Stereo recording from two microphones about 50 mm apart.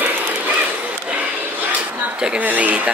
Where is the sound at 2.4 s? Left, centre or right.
Right.